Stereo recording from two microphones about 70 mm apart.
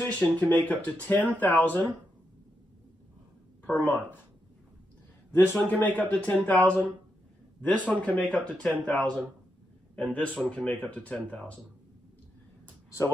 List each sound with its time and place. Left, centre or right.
0.0 s speech: left
3.7 s speech: centre
5.3 s speech: left